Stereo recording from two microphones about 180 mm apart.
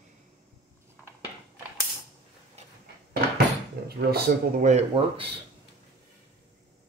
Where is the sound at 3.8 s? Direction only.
60° right (ahead or behind).